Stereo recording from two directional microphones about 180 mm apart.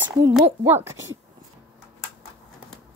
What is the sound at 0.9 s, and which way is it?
Speech, 90° right.